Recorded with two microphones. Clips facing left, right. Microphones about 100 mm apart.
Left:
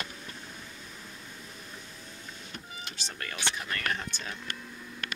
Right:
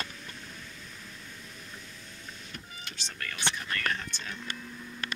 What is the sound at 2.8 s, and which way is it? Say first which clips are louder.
Power windows: right 1 dB; 5° left (ahead or behind).